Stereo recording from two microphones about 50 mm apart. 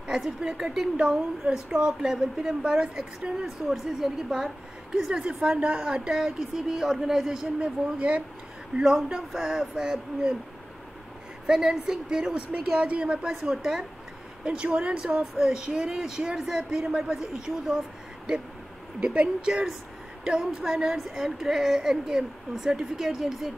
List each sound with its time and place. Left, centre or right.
0.1 s speech: centre
3.4 s speech: centre
5.6 s a woman's voice: right
6.1 s speech: centre
7.6 s a woman's voice: right
8.7 s speech: centre
11.4 s speech: centre
12.7 s a woman's voice: right; by 13.8 s centre
14.4 s speech: centre
18.9 s a woman's voice: right; by 23.5 s centre